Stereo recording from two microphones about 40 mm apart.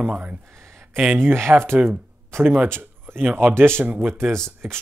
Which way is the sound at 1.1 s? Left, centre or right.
Right.